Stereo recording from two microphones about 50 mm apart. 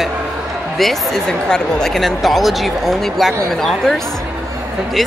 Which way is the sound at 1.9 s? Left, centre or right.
Centre.